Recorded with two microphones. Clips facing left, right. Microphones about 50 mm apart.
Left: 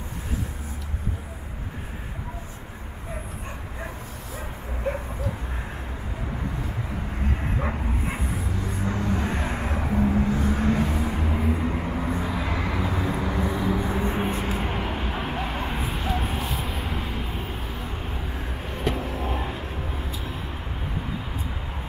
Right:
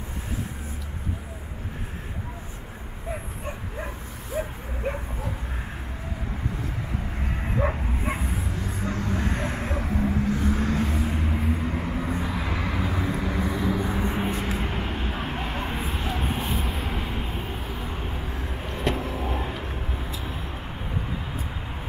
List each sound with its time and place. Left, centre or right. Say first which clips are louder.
7.4 s bow-wow: right 6 dB; centre
8.0 s a sound: even; centre
8.8 s vehicle: left 1 dB; centre